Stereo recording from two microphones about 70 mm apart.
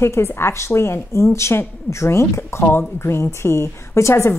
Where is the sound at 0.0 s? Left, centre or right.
Left.